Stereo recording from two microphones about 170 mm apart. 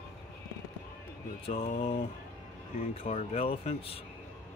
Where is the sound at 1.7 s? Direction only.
35° left (ahead or behind).